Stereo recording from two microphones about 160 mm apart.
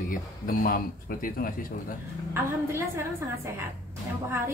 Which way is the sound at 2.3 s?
15° right (ahead or behind).